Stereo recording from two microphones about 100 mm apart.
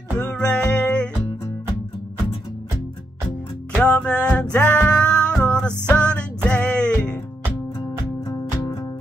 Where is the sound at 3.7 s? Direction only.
15° left (ahead or behind).